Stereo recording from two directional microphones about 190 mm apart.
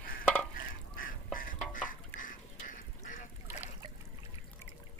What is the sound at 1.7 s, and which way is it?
Stir, 45° left (ahead or behind).